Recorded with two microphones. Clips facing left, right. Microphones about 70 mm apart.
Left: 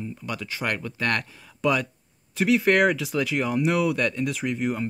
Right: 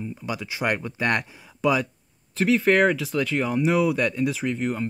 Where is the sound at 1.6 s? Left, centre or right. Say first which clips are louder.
Right 1 dB; centre.